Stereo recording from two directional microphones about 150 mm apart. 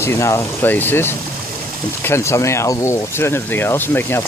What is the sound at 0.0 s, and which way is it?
Speech, 20° left (ahead or behind).